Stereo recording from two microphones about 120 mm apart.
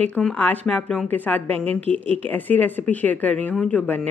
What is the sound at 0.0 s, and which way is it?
Speech, 10° left (ahead or behind).